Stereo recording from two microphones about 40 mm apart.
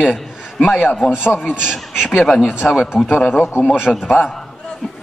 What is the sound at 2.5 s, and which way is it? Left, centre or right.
A man's voice, centre.